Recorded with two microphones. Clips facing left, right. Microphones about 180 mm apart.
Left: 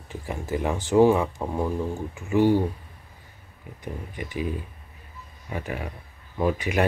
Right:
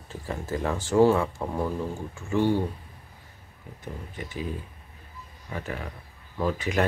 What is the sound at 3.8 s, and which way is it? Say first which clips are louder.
Speech: left 3 dB; 15° left (ahead or behind).